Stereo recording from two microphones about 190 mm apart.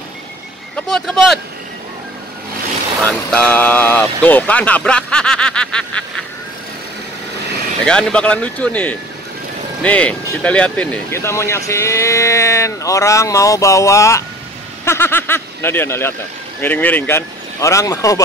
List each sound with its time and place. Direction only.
0.9 s speech: centre (ahead or behind)
3.1 s speech: 10° left (ahead or behind)
7.8 s speech: 5° left (ahead or behind)